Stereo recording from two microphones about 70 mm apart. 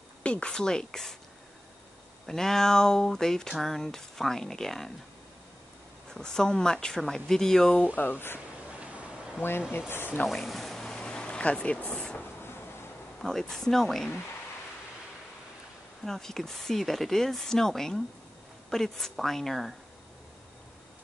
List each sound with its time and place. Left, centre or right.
0.2 s speech: centre
2.2 s speech: centre
6.1 s speech: centre
7.9 s speech: left
9.4 s speech: left
10.2 s a sound: centre
12.2 s a sound: left
13.2 s speech: centre
16.1 s speech: centre